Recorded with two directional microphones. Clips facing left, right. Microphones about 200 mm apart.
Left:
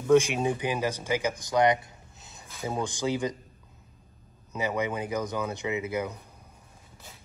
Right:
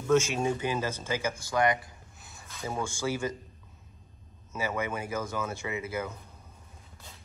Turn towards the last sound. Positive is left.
turn(degrees=15)  # may be behind; listen again after turning